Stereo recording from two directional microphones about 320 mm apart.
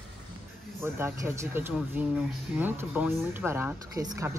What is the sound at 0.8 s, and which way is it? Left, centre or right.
Speech, centre.